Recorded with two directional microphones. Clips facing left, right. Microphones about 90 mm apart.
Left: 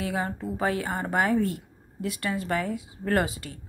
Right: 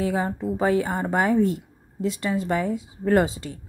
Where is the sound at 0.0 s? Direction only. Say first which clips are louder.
Right 5 dB; 25° right (ahead or behind).